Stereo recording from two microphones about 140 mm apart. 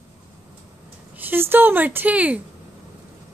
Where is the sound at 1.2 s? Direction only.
15° right (ahead or behind).